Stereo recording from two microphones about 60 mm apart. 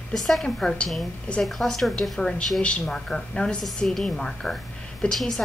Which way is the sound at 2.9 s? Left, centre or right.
Centre.